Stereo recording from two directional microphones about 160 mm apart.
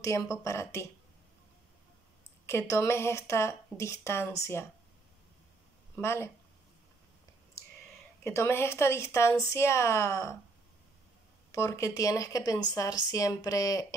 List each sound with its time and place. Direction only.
0.0 s speech: 20° left (ahead or behind)
2.4 s speech: 15° left (ahead or behind)
5.9 s speech: 15° left (ahead or behind)
8.2 s speech: 15° left (ahead or behind)
11.5 s speech: 20° left (ahead or behind)